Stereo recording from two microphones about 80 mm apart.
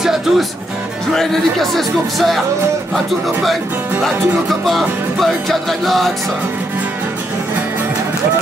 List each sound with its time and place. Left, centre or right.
0.0 s speech: centre
5.2 s speech: centre